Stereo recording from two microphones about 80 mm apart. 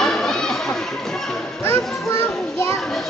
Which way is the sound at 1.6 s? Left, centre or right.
Left.